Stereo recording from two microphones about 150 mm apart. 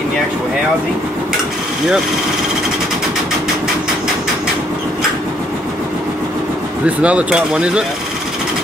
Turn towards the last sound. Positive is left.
turn(degrees=-5)  # may be behind; listen again after turning